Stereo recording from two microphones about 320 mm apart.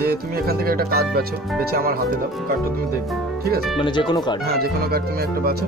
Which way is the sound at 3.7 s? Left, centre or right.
Centre.